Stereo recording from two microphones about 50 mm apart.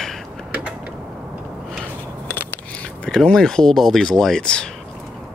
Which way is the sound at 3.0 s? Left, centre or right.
Centre.